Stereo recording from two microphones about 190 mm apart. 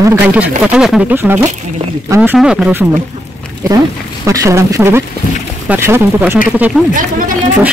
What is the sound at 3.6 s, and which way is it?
Speech, 15° right (ahead or behind).